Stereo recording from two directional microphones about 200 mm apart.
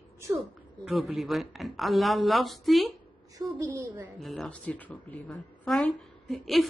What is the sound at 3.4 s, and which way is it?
Speech, 20° right (ahead or behind).